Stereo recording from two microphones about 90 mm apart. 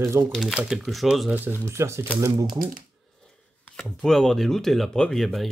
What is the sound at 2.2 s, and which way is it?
Speech, 40° right (ahead or behind).